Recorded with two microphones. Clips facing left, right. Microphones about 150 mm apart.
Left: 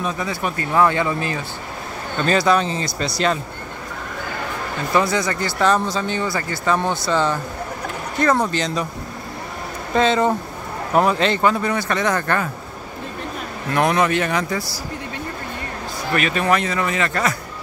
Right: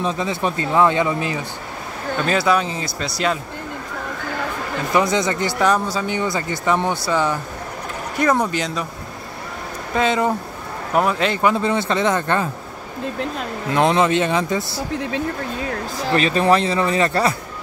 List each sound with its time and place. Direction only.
0.0 s speech: 25° right (ahead or behind)
2.2 s speech: 5° right (ahead or behind)
4.9 s speech: 20° right (ahead or behind)
9.9 s speech: 10° right (ahead or behind)
11.5 s speech: 25° right (ahead or behind)
13.7 s speech: 20° right (ahead or behind)
16.1 s speech: 30° right (ahead or behind)